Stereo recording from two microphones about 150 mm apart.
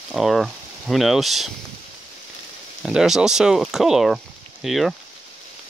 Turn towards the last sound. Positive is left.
turn(degrees=0)  # may be behind; listen again after turning